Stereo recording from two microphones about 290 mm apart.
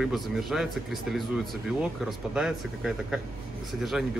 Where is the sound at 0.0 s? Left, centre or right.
Centre.